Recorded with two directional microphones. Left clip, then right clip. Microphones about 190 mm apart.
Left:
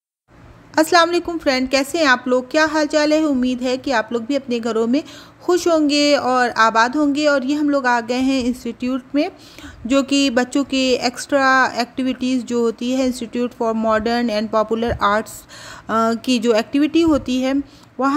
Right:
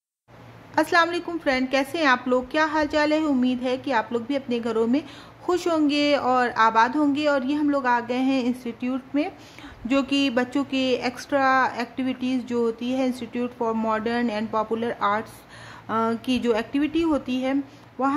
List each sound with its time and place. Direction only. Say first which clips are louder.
0.7 s speech: left 6 dB; 25° left (ahead or behind)